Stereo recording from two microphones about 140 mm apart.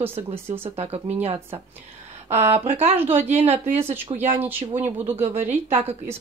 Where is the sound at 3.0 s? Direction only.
15° right (ahead or behind).